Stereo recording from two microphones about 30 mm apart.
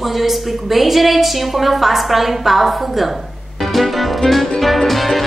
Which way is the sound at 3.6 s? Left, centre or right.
Centre.